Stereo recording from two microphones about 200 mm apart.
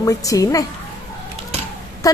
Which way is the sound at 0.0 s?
15° left (ahead or behind).